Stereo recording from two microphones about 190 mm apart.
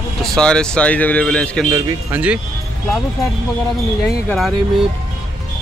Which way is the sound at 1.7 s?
20° right (ahead or behind).